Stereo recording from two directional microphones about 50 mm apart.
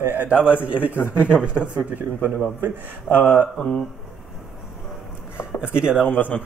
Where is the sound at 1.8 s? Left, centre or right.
Right.